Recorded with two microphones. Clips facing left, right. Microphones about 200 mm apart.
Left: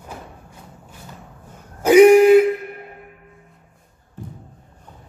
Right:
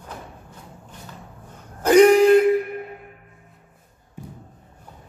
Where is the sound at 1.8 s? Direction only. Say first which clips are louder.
Left 3 dB; 10° left (ahead or behind).